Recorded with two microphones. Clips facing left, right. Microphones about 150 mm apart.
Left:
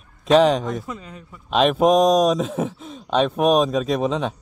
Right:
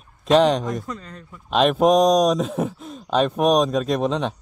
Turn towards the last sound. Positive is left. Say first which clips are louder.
# even
turn(degrees=0)  # may be behind; listen again after turning